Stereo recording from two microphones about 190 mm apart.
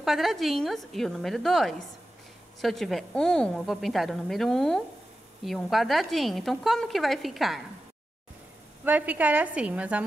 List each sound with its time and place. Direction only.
0.0 s speech: centre (ahead or behind)
8.8 s a woman's voice: 10° right (ahead or behind)